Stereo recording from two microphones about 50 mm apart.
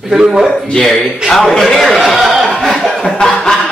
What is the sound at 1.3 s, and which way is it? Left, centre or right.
A man's voice, centre.